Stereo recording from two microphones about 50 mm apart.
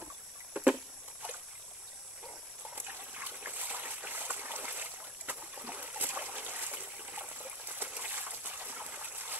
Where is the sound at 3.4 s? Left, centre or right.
Right.